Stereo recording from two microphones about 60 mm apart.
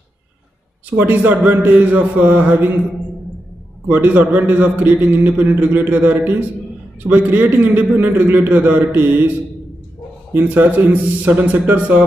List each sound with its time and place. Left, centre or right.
0.8 s a man's voice: right
3.8 s a man's voice: right
10.3 s a man's voice: right